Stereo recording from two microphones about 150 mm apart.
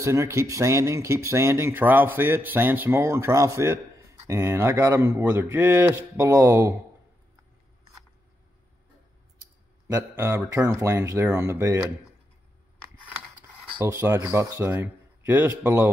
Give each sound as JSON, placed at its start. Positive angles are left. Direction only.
{"t": 0.0, "sound": "speech", "side_deg": -20}
{"t": 9.9, "sound": "speech", "side_deg": -15}
{"t": 13.8, "sound": "speech", "side_deg": -20}